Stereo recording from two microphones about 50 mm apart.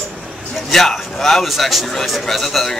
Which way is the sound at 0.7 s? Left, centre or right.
Centre.